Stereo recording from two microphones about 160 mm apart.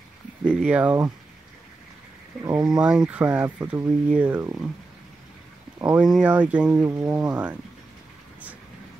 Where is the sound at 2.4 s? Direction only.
20° right (ahead or behind).